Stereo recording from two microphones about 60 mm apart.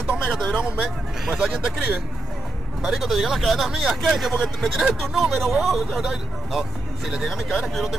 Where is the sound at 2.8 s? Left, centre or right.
Centre.